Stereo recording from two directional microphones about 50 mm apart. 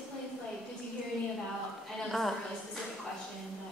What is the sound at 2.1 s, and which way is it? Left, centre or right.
Speech, centre.